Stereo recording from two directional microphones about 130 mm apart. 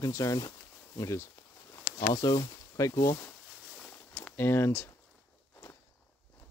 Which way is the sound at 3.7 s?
10° left (ahead or behind).